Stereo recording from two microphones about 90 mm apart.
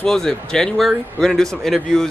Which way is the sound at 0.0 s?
5° left (ahead or behind).